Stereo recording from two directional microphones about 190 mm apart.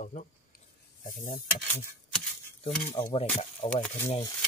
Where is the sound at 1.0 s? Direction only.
45° left (ahead or behind).